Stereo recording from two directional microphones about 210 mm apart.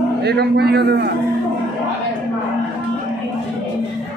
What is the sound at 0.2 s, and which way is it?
Speech, 50° right (ahead or behind).